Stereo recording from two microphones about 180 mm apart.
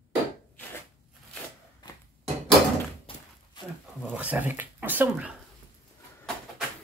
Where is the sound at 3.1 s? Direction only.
30° left (ahead or behind).